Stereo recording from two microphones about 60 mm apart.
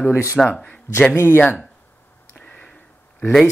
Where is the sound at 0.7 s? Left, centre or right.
Left.